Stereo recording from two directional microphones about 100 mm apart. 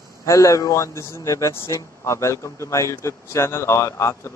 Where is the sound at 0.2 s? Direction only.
30° left (ahead or behind).